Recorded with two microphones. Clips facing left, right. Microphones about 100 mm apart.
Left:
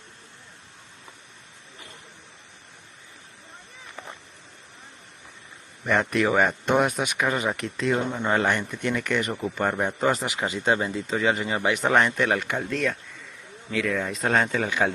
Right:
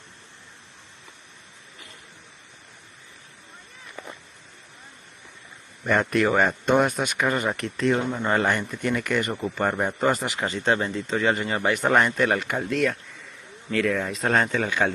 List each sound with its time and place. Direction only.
5.9 s speech: centre (ahead or behind)
10.4 s speech: 10° left (ahead or behind)
14.6 s speech: 15° left (ahead or behind)